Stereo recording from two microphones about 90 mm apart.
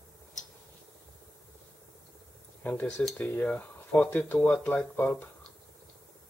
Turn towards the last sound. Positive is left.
turn(degrees=15)  # may be behind; listen again after turning